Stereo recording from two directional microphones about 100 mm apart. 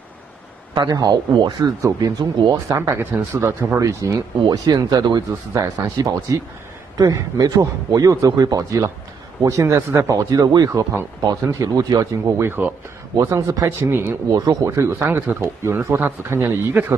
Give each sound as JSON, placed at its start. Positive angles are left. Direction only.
{"t": 0.7, "sound": "a man's voice", "side_deg": -40}
{"t": 1.6, "sound": "speech", "side_deg": -35}
{"t": 2.8, "sound": "speech", "side_deg": -25}
{"t": 12.4, "sound": "speech", "side_deg": -25}
{"t": 14.3, "sound": "speech", "side_deg": -40}